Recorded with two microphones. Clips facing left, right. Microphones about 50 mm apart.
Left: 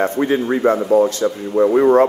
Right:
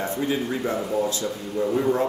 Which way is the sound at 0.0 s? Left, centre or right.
Left.